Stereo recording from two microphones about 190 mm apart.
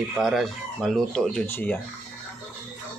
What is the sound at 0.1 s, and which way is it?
Speech, centre (ahead or behind).